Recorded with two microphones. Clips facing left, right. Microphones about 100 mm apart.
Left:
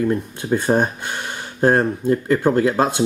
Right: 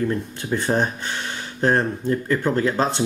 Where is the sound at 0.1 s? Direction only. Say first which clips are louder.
Left 4 dB; 25° left (ahead or behind).